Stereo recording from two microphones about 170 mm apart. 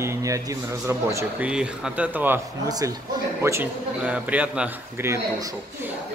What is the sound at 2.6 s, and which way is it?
Speech, 20° right (ahead or behind).